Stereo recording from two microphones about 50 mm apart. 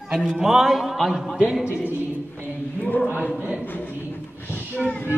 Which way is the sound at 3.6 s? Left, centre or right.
Left.